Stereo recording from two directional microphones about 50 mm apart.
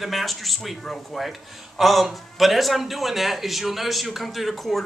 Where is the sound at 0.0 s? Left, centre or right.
Centre.